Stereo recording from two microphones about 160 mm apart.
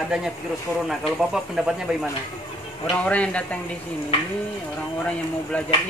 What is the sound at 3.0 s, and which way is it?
Speech, 10° left (ahead or behind).